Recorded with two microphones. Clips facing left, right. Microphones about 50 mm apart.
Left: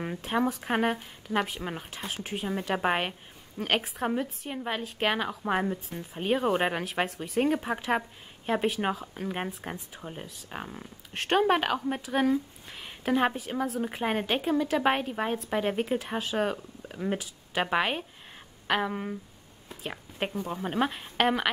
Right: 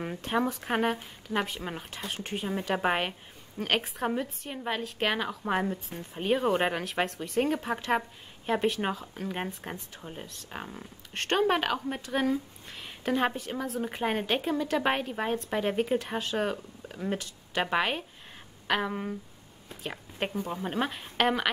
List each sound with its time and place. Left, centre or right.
0.0 s speech: centre